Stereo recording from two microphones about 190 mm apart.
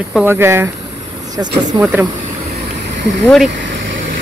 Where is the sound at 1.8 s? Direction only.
10° right (ahead or behind).